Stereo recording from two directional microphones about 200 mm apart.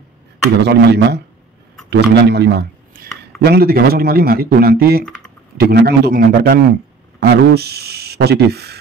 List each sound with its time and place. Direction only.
0.6 s a man's voice: 55° right (ahead or behind)